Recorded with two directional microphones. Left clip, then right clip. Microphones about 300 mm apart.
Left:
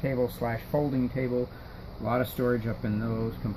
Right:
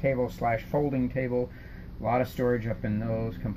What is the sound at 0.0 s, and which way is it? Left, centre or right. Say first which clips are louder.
Speech: right 2 dB; centre.